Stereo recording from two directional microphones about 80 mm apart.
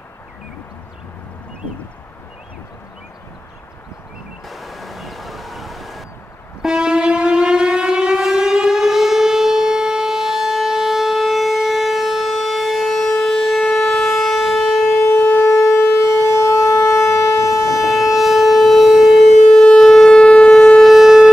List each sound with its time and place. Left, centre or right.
4.5 s a sound: centre
6.6 s civil defense siren: centre
16.0 s siren: left
17.5 s siren: centre